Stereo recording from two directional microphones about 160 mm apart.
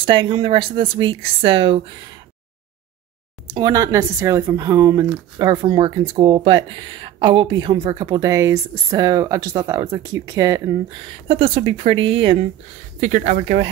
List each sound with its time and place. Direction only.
0.0 s speech: 30° right (ahead or behind)
3.4 s speech: 25° right (ahead or behind)
11.2 s speech: 35° right (ahead or behind)
13.0 s speech: 55° right (ahead or behind)